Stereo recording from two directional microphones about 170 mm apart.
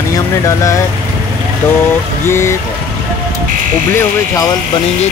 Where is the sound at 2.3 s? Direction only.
15° left (ahead or behind).